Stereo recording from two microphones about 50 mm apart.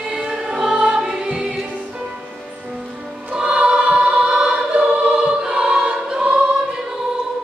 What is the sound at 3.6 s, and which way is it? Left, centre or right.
Choir, right.